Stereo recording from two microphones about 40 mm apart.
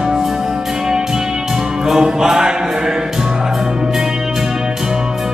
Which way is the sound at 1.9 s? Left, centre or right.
Centre.